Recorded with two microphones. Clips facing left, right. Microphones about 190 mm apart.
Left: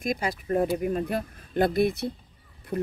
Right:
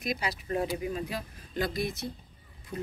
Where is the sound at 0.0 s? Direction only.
50° left (ahead or behind).